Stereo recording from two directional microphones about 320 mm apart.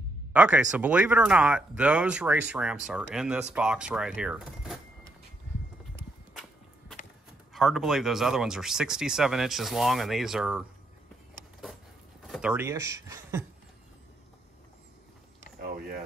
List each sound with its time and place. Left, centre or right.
0.3 s speech: centre
7.5 s speech: centre
12.3 s speech: centre
15.6 s power windows: right